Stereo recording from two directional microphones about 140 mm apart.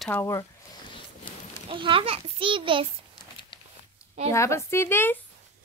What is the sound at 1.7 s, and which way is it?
A child's voice, 40° right (ahead or behind).